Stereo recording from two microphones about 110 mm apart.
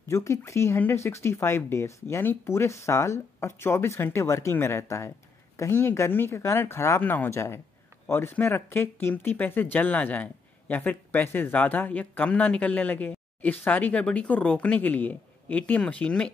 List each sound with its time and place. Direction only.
0.1 s speech: 25° left (ahead or behind); by 16.3 s 10° left (ahead or behind)